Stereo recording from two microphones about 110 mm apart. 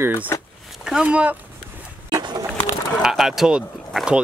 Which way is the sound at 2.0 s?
40° right (ahead or behind).